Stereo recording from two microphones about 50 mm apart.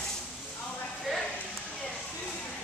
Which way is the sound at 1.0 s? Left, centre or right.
Centre.